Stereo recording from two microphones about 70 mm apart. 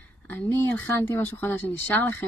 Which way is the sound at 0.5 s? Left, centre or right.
Left.